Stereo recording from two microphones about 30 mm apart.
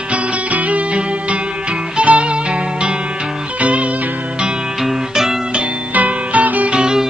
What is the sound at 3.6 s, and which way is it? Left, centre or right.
Music, right.